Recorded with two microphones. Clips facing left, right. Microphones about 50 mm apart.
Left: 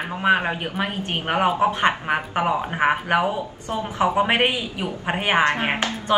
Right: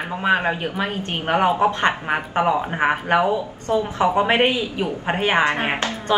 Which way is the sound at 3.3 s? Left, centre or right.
Centre.